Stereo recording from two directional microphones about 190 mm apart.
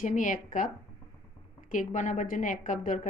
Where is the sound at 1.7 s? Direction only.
40° left (ahead or behind).